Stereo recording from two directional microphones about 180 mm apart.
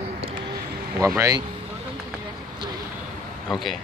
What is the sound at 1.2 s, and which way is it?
Speech, 20° right (ahead or behind).